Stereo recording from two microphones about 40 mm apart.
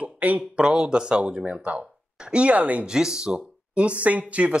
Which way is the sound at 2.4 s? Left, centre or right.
Right.